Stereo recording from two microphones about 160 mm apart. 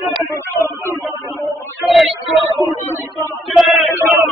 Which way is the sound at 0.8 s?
15° right (ahead or behind).